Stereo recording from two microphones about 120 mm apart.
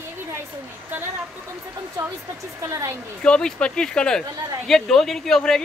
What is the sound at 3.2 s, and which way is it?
Speech, 5° left (ahead or behind).